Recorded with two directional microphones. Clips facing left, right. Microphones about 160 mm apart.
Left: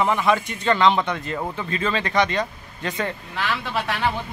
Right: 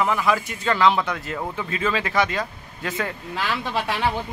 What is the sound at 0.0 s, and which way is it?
Speech, centre (ahead or behind).